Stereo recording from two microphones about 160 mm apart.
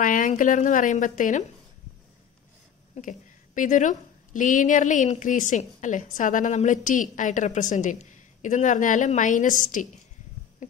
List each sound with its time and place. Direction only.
0.0 s a woman's voice: 55° left (ahead or behind)
2.9 s a woman's voice: 55° left (ahead or behind)
10.6 s a sound: 50° left (ahead or behind)